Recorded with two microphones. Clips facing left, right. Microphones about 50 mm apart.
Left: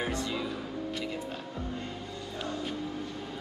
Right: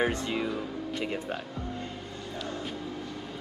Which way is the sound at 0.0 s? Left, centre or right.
Right.